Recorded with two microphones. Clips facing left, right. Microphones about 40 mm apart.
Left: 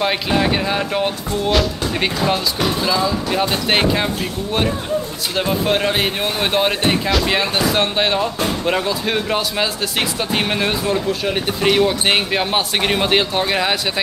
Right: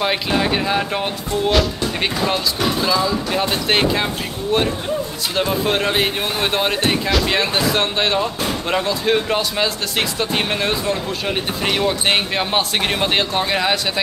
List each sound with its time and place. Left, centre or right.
0.0 s speech: centre